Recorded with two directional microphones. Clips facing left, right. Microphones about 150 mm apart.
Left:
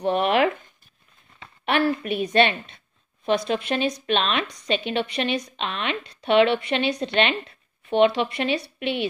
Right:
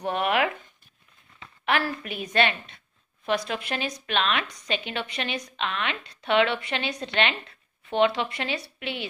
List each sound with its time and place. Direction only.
0.0 s zipper: 25° left (ahead or behind)
1.4 s a woman's voice: 25° left (ahead or behind)